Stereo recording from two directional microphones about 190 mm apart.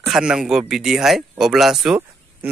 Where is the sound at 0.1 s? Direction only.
5° right (ahead or behind).